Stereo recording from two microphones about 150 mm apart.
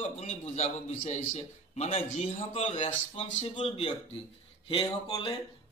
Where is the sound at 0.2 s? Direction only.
45° left (ahead or behind).